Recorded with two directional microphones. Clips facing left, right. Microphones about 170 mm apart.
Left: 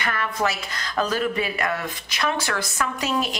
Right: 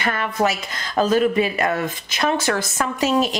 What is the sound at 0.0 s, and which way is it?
Speech, 25° right (ahead or behind).